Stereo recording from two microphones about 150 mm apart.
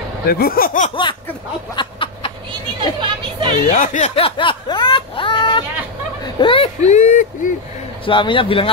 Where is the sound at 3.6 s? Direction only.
60° left (ahead or behind); by 6.6 s 35° left (ahead or behind).